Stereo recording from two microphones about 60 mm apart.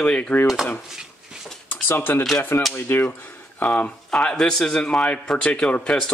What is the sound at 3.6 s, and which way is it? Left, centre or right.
Speech, left.